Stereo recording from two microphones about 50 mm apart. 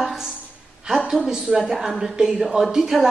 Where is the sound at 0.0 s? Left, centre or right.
Centre.